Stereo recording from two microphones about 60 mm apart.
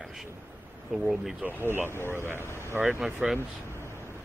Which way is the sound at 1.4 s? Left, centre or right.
Right.